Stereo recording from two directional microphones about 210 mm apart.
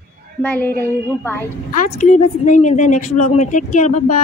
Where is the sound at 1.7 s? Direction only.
40° left (ahead or behind).